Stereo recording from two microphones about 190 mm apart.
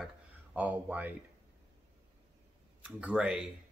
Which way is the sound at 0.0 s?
5° right (ahead or behind).